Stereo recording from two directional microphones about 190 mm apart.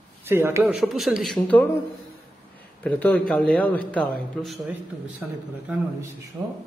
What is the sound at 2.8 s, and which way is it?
A man's voice, 10° left (ahead or behind).